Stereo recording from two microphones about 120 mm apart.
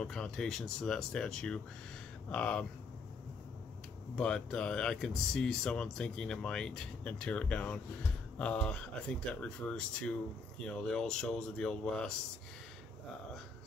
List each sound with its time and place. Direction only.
0.0 s speech: 5° left (ahead or behind)
4.1 s speech: 5° left (ahead or behind)